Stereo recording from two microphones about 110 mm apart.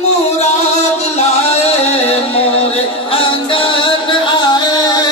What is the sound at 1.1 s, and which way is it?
Music, 70° left (ahead or behind).